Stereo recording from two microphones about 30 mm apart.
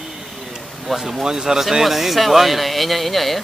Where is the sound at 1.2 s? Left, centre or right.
Centre.